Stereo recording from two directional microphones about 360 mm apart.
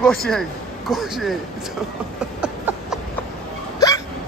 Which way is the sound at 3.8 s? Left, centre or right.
Centre.